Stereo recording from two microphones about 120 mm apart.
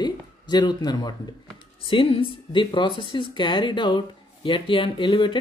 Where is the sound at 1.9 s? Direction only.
45° left (ahead or behind).